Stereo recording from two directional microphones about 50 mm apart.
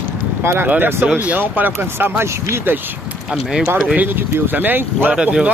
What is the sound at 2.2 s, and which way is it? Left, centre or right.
Speech, right.